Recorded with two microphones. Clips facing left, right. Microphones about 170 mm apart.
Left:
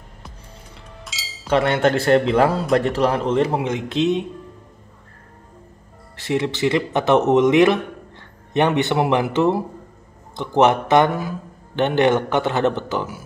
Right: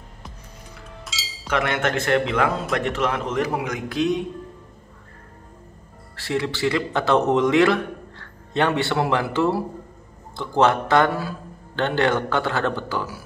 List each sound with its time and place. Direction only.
1.5 s a man's voice: 30° left (ahead or behind)
6.1 s a man's voice: 20° left (ahead or behind)